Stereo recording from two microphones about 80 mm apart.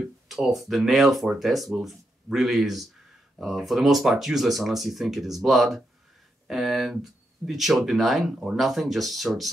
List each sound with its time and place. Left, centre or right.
0.0 s speech: centre